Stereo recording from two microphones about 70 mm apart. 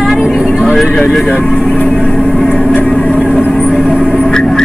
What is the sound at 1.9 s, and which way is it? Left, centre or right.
Vehicle, centre.